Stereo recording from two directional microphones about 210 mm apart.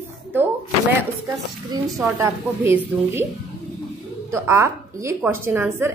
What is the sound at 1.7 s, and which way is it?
A woman's voice, 15° right (ahead or behind).